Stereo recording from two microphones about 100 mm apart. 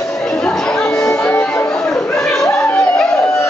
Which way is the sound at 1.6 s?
5° left (ahead or behind).